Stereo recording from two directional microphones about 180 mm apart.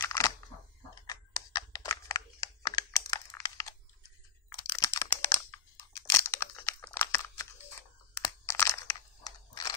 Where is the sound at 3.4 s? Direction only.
20° left (ahead or behind).